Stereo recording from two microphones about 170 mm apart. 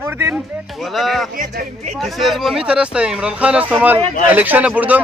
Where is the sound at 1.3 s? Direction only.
60° right (ahead or behind).